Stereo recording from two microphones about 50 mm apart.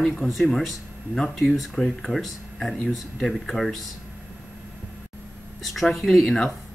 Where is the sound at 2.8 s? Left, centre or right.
Centre.